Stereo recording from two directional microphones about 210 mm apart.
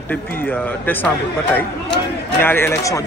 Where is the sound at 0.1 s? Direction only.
10° left (ahead or behind).